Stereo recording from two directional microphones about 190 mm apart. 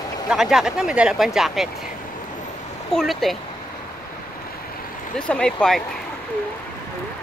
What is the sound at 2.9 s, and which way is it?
Speech, centre (ahead or behind).